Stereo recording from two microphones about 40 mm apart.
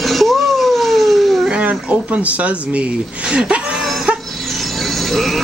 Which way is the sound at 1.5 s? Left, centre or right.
Right.